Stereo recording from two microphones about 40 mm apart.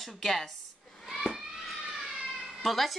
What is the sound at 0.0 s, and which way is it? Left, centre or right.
Speech, centre.